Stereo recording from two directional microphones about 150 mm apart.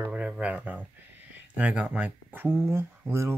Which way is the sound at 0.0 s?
10° right (ahead or behind).